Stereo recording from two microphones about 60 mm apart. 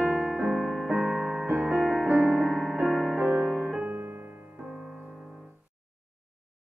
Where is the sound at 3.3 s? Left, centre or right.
Centre.